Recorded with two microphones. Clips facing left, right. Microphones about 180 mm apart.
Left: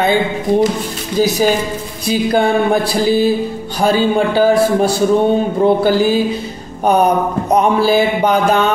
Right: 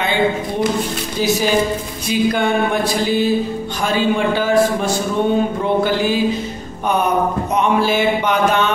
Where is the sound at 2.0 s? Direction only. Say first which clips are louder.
Left 3 dB; 35° left (ahead or behind).